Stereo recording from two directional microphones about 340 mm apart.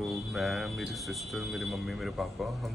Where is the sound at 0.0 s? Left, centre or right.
Centre.